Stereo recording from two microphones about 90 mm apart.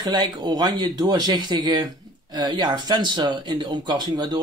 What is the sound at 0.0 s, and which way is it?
Speech, 50° right (ahead or behind).